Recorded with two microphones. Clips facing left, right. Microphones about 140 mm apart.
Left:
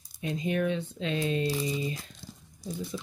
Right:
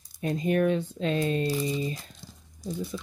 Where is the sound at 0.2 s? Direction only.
45° right (ahead or behind).